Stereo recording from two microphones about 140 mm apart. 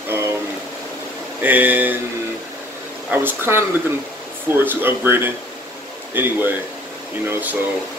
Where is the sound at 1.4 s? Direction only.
10° right (ahead or behind).